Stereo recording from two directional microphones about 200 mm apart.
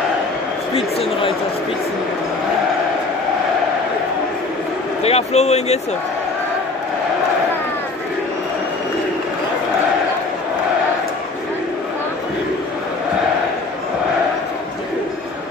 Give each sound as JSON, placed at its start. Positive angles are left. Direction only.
{"t": 0.7, "sound": "speech", "side_deg": 30}
{"t": 5.0, "sound": "speech", "side_deg": 30}